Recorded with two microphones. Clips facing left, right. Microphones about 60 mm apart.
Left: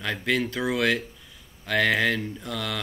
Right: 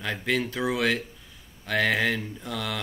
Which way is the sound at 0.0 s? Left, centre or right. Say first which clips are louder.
Left 1 dB; centre.